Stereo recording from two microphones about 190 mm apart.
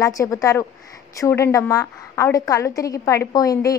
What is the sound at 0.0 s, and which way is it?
A woman's voice, 15° left (ahead or behind).